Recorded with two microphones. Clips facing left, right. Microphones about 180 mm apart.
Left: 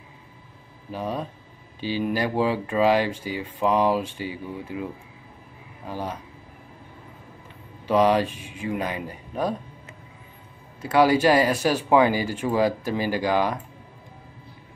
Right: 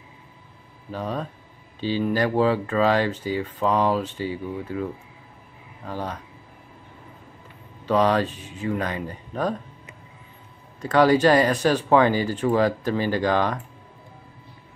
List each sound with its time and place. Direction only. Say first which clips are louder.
0.9 s speech: even; 10° left (ahead or behind)
5.9 s speech: even; 10° left (ahead or behind)
7.8 s speech: left 1 dB; 10° left (ahead or behind)
10.8 s speech: right 1 dB; 10° left (ahead or behind)